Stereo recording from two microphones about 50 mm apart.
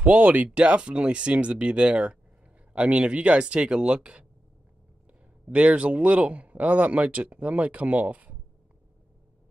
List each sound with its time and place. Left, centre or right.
0.0 s a man's voice: right